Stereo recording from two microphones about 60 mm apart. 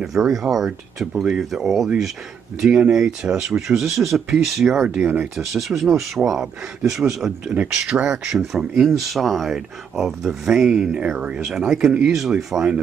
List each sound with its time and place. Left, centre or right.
0.0 s speech: centre
2.9 s speech: centre
4.8 s speech: centre
5.4 s speech: centre
11.4 s speech: centre